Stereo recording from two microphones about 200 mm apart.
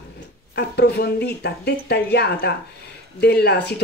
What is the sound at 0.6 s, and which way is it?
Speech, 55° left (ahead or behind).